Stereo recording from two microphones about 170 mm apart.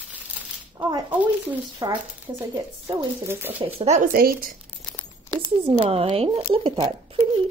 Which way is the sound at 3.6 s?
40° right (ahead or behind).